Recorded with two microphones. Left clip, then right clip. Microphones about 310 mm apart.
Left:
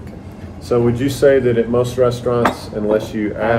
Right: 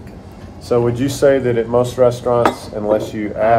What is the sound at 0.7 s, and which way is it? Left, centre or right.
Speech, right.